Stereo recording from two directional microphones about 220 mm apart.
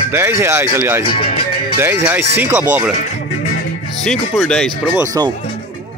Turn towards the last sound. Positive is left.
turn(degrees=-20)  # may be behind; listen again after turning